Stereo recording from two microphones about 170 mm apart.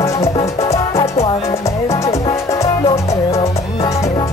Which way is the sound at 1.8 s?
15° left (ahead or behind).